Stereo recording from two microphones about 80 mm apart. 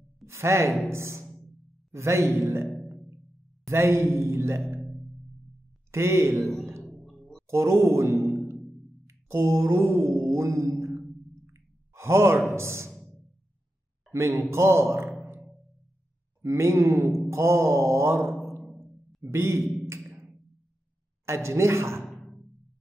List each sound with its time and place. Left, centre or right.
0.3 s a man's voice: right
5.9 s a man's voice: right
6.8 s music: centre
7.4 s a man's voice: right
9.3 s mantra: right
11.4 s sigh: right
12.5 s speech: right
14.5 s speech: right
16.3 s speech: right
17.3 s mantra: right
19.2 s a man's voice: right
21.3 s a man's voice: right
22.0 s music: centre